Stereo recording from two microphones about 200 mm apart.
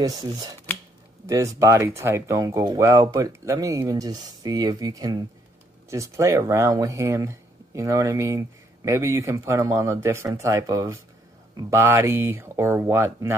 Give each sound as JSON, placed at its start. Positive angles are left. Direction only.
{"t": 0.0, "sound": "speech", "side_deg": -20}